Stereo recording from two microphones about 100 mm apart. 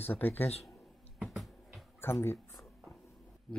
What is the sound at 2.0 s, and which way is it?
Speech, 25° left (ahead or behind).